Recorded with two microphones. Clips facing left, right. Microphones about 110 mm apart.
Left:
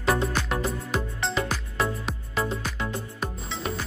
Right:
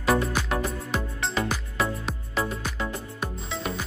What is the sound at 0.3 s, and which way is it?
Music, centre (ahead or behind).